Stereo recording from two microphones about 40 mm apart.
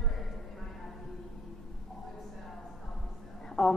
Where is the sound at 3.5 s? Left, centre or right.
Centre.